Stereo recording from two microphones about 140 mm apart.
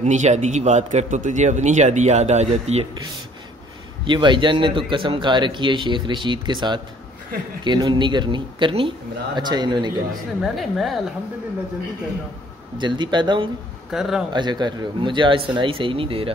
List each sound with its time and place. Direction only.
0.0 s a man's voice: 55° right (ahead or behind)
4.0 s a man's voice: 35° right (ahead or behind)
10.4 s a woman's voice: centre (ahead or behind)
12.7 s a man's voice: 35° right (ahead or behind)
13.8 s speech: 5° right (ahead or behind)
14.3 s a man's voice: 30° right (ahead or behind)